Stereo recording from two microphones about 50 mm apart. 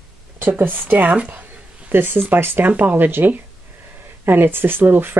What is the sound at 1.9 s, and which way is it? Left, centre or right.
Speech, right.